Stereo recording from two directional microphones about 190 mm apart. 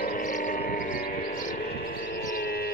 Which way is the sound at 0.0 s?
45° left (ahead or behind).